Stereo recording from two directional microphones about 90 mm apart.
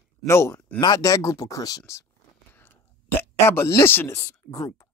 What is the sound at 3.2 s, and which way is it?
Speech, 25° left (ahead or behind).